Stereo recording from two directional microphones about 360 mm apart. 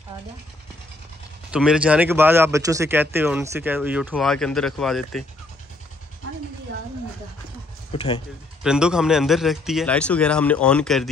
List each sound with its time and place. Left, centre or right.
1.5 s speech: centre
7.9 s speech: centre
8.6 s speech: centre